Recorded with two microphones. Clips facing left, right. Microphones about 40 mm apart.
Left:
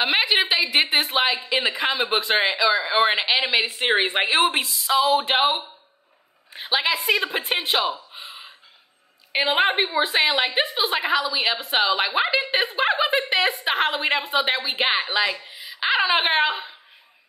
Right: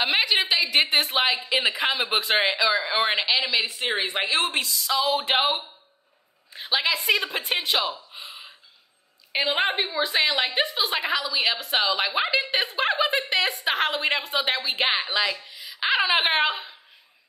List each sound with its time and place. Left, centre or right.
0.0 s a woman's voice: centre
3.4 s a woman's voice: left
5.1 s speech: centre
6.7 s a woman's voice: centre
8.1 s gasp: centre
9.3 s a woman's voice: centre
9.7 s a woman's voice: left
10.4 s speech: centre
11.1 s a woman's voice: centre
13.7 s a woman's voice: centre
15.0 s speech: left
15.8 s speech: centre